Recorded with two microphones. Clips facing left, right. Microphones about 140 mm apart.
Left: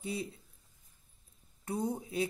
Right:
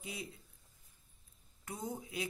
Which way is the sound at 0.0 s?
30° left (ahead or behind).